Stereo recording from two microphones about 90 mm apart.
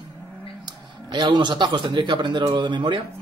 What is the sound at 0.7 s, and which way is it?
Speech, 60° right (ahead or behind).